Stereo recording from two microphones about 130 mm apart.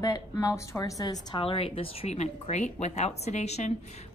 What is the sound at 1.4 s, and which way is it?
Speech, 45° left (ahead or behind).